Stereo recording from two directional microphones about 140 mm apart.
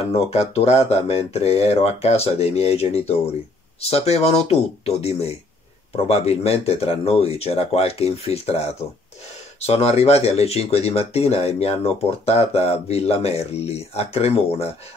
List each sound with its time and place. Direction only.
0.3 s speech: 50° left (ahead or behind)